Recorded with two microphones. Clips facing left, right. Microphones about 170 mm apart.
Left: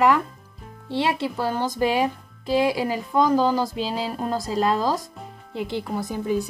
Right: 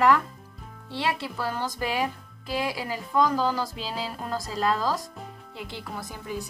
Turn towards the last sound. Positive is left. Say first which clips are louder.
# left 10 dB
turn(degrees=25)  # may be behind; listen again after turning